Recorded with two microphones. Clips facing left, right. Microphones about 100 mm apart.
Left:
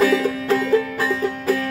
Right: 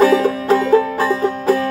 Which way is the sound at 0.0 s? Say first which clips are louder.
Right 5 dB; 30° right (ahead or behind).